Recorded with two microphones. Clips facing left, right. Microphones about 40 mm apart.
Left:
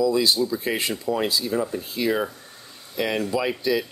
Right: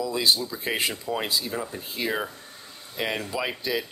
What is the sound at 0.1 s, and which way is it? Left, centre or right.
Speech, right.